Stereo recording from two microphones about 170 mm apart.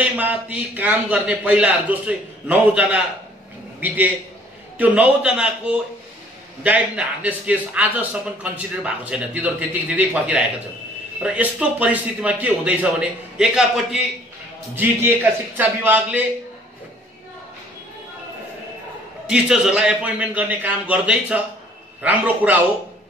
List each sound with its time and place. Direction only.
0.0 s a man's voice: 10° right (ahead or behind)
19.2 s a man's voice: 5° right (ahead or behind)